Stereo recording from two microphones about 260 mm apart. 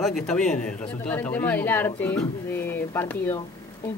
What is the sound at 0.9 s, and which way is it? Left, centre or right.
Speech, centre.